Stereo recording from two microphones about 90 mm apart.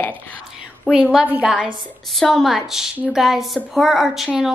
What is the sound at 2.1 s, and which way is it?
A woman's voice, centre (ahead or behind).